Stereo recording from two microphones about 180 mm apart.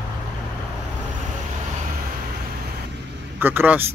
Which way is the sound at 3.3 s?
10° right (ahead or behind).